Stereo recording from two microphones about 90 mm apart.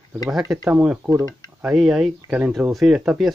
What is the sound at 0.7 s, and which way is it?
Speech, 10° right (ahead or behind).